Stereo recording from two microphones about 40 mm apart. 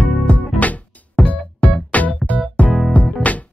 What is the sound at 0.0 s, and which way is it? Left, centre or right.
Music, left.